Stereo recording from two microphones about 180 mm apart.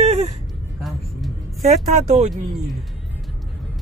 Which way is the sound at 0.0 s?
40° right (ahead or behind).